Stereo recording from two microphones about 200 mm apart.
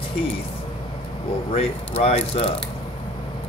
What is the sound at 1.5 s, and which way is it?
Speech, 30° left (ahead or behind).